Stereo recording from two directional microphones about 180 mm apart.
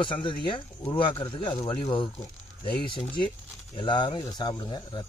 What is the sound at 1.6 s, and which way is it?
Speech, 30° left (ahead or behind).